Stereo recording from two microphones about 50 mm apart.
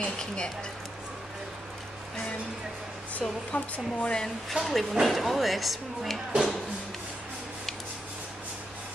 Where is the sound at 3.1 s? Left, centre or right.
Left.